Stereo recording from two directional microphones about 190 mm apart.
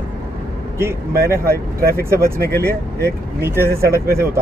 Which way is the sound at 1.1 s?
55° right (ahead or behind).